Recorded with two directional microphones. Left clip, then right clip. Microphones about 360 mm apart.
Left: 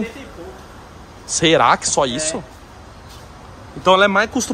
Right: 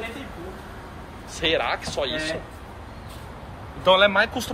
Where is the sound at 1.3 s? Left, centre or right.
Left.